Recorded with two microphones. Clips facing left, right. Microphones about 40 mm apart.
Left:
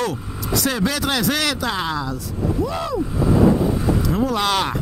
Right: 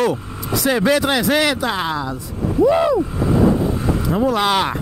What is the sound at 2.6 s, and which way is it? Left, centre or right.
Vehicle, right.